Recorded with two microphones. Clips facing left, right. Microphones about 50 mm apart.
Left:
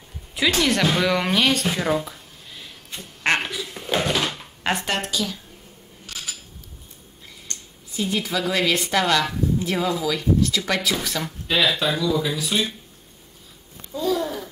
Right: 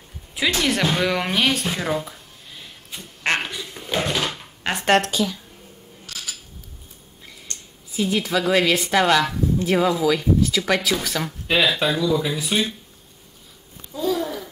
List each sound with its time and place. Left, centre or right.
0.4 s a sound: centre
4.8 s a woman's voice: right
6.0 s cutlery: left
7.9 s a woman's voice: centre
11.4 s speech: centre
13.9 s babbling: centre